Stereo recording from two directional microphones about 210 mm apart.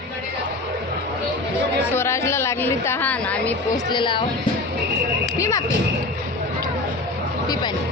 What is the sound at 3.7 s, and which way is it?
Speech, 20° left (ahead or behind).